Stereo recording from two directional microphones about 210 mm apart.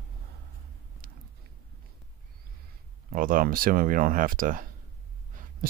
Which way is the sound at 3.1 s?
40° right (ahead or behind).